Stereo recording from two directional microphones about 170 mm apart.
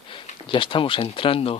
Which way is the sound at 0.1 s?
30° left (ahead or behind).